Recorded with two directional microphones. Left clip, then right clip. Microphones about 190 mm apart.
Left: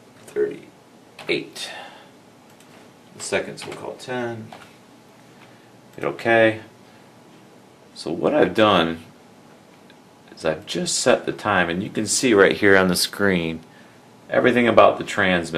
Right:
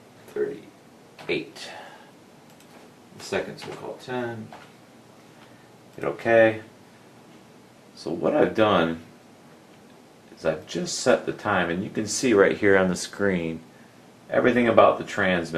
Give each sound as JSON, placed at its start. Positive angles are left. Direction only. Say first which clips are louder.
{"t": 0.3, "sound": "a sound", "louder": "left 5 dB", "side_deg": 15}
{"t": 5.9, "sound": "speech", "louder": "left 1 dB", "side_deg": 15}
{"t": 8.0, "sound": "speech", "louder": "left 3 dB", "side_deg": 15}
{"t": 10.4, "sound": "speech", "louder": "left 3 dB", "side_deg": 15}